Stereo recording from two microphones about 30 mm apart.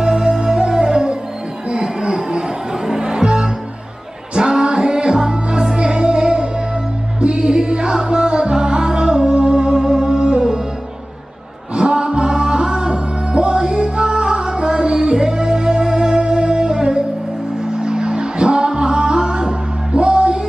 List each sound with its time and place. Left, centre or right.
0.0 s music: right
11.7 s music: right